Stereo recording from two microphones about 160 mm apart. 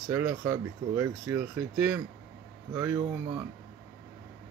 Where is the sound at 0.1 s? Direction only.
15° right (ahead or behind).